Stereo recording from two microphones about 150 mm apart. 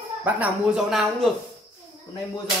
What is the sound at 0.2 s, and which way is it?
Speech, 10° right (ahead or behind).